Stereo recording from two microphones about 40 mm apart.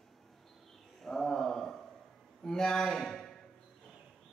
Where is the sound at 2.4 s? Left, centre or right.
Centre.